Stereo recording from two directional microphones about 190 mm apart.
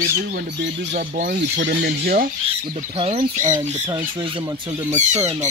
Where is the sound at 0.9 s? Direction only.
50° right (ahead or behind).